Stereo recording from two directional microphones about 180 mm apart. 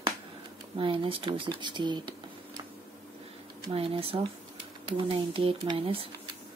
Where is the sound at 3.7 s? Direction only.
30° right (ahead or behind).